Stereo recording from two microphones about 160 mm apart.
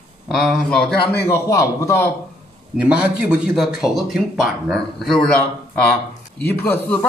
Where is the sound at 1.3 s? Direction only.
20° left (ahead or behind).